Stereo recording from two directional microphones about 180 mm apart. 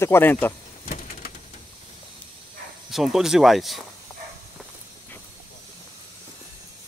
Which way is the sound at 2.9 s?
Centre (ahead or behind).